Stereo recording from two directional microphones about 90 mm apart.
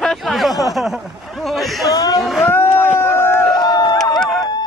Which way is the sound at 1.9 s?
45° left (ahead or behind).